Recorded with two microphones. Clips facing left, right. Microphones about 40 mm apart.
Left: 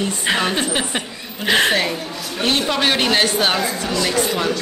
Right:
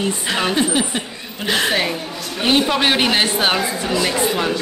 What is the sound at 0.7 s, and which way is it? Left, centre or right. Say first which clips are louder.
Chuckle: right 1 dB; centre.